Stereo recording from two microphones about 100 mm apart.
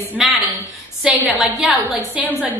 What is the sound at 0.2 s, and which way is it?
Speech, 5° right (ahead or behind).